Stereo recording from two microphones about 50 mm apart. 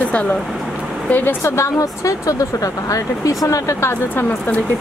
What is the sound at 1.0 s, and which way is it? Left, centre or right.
Speech, left.